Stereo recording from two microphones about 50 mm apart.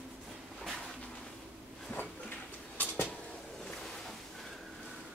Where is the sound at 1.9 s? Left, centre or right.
Left.